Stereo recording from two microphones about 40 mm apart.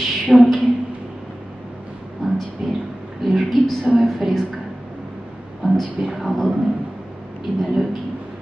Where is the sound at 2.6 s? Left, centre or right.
Centre.